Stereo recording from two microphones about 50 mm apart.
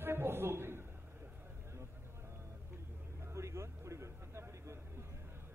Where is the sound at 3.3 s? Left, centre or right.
Right.